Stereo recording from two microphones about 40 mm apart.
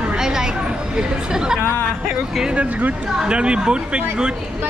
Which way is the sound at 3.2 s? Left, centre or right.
Right.